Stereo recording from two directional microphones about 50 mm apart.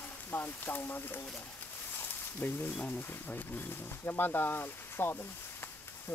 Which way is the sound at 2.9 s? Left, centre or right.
Left.